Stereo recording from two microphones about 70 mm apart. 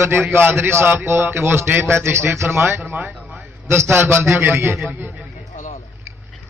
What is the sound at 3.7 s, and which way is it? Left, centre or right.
A man's voice, right.